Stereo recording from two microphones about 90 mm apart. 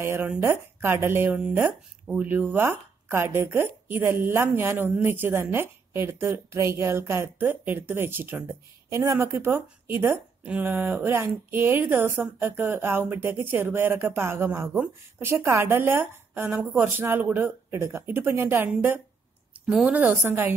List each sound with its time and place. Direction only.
0.0 s speech: 25° right (ahead or behind)
19.6 s a woman's voice: 5° right (ahead or behind)
19.9 s a woman's voice: 15° right (ahead or behind)
20.2 s speech: 25° right (ahead or behind)